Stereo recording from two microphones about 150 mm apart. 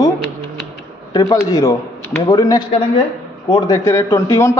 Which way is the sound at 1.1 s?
25° left (ahead or behind).